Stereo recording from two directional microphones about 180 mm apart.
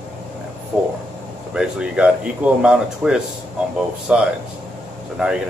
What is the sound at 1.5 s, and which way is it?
Speech, 5° right (ahead or behind).